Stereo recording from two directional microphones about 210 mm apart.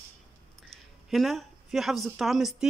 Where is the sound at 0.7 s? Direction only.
Centre (ahead or behind).